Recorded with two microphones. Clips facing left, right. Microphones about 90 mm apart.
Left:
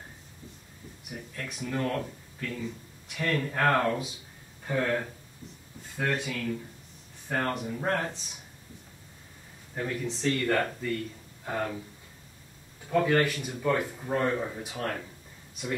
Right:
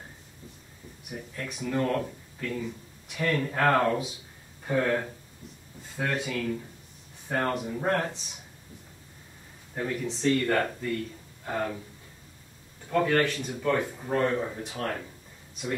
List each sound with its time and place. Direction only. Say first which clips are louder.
1.3 s speech: right 2 dB; 15° right (ahead or behind)
1.7 s speech: right 3 dB; 5° right (ahead or behind)
9.8 s speech: right 1 dB; 5° right (ahead or behind)
12.9 s a man's voice: even; 5° left (ahead or behind)